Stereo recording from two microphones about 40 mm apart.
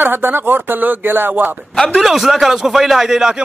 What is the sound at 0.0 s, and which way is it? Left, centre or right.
Speech, right.